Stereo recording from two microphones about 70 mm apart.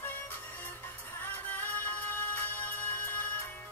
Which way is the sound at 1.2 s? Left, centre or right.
Left.